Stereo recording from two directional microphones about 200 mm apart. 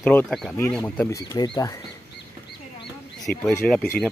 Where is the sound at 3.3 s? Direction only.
5° left (ahead or behind).